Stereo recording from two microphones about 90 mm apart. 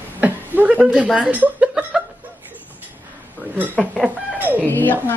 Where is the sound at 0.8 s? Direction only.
5° right (ahead or behind).